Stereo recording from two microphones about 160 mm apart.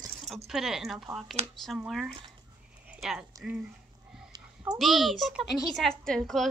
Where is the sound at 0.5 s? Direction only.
Centre (ahead or behind).